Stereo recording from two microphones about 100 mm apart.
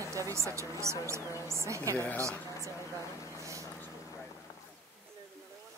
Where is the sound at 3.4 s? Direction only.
30° right (ahead or behind).